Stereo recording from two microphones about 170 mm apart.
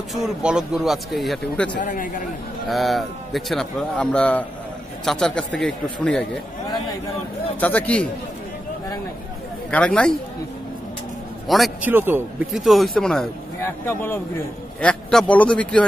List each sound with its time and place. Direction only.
0.1 s a man's voice: 5° right (ahead or behind)
1.8 s speech: 55° left (ahead or behind)
2.7 s a man's voice: centre (ahead or behind)
7.6 s a man's voice: 10° left (ahead or behind)
9.7 s a man's voice: 5° left (ahead or behind)
11.4 s a man's voice: centre (ahead or behind)
11.9 s a man's voice: 10° right (ahead or behind)
12.5 s a man's voice: centre (ahead or behind)
13.6 s a man's voice: 15° left (ahead or behind)